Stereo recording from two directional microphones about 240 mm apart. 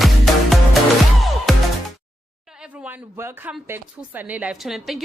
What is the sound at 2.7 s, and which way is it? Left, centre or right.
Speech, centre.